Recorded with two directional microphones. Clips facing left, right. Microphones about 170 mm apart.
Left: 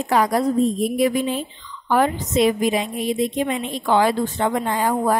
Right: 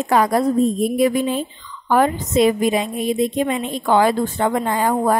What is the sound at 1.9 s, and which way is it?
A woman's voice, 45° right (ahead or behind).